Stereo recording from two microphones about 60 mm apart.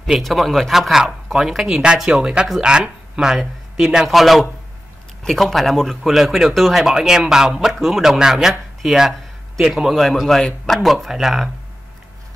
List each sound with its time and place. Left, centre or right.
0.0 s speech: centre
2.0 s speech: centre